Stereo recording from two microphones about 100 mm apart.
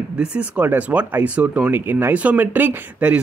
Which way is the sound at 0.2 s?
10° right (ahead or behind).